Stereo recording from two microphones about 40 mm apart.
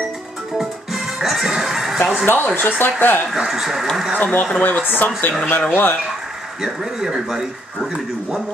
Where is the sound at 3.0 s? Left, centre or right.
Left.